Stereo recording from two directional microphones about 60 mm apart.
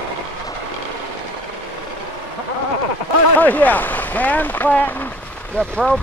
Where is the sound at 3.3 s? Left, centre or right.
Left.